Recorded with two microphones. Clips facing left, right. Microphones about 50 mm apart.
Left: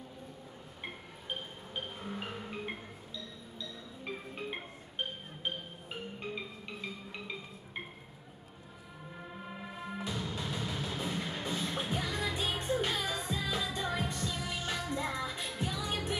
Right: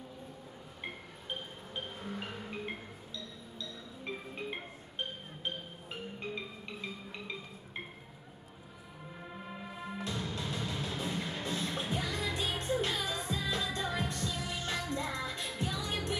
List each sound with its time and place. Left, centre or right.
1.8 s music: centre
9.5 s music: centre